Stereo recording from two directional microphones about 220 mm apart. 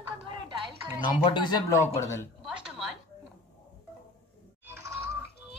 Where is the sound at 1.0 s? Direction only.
20° left (ahead or behind).